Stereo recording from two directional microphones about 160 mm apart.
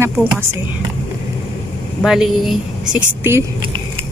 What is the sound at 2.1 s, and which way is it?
A woman's voice, 5° right (ahead or behind).